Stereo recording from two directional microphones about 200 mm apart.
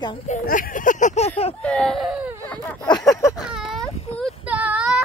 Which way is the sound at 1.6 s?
5° left (ahead or behind).